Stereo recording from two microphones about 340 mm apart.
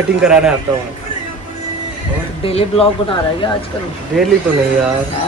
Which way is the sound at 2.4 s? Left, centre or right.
Centre.